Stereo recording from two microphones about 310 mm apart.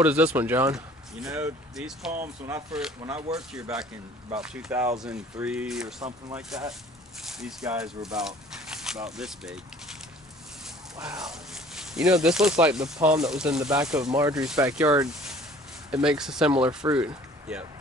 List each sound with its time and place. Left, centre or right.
0.0 s speech: centre
3.3 s speech: centre
5.9 s speech: centre
6.3 s speech: centre
11.0 s speech: centre
16.5 s speech: centre
17.5 s speech: centre